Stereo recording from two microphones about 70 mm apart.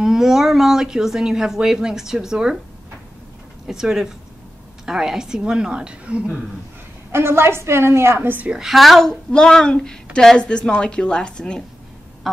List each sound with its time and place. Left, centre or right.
0.0 s speech: centre
3.6 s speech: centre
7.1 s a woman's voice: right
8.5 s a woman's voice: centre